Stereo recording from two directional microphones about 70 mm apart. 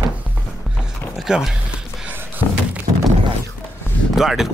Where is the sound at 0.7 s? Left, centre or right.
Centre.